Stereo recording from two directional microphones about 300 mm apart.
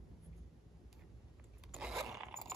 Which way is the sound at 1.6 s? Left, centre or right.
Centre.